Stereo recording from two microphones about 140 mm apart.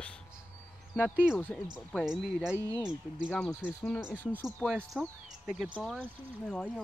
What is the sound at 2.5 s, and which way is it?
Speech, 25° right (ahead or behind).